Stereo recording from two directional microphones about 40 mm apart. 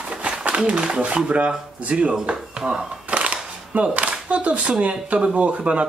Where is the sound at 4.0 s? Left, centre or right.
Right.